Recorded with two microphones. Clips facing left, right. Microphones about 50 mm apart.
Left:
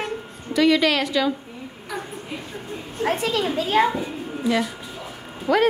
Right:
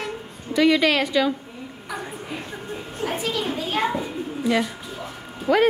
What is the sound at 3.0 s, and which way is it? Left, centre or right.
Speech, left.